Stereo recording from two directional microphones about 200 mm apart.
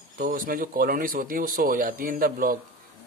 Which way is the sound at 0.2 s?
45° right (ahead or behind).